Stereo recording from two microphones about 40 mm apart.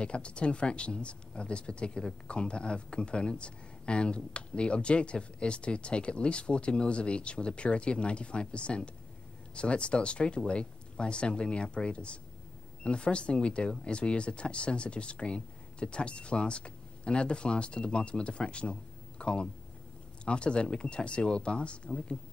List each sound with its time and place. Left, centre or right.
0.0 s speech: left